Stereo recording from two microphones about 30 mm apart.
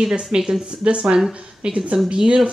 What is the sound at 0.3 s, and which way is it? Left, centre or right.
Speech, right.